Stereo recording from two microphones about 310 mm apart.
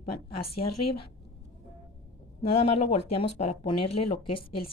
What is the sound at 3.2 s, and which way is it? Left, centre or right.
Speech, centre.